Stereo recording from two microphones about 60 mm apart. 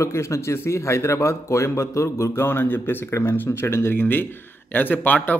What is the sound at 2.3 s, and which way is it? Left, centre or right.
Speech, left.